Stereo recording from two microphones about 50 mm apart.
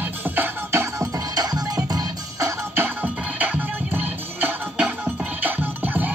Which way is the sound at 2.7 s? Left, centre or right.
Right.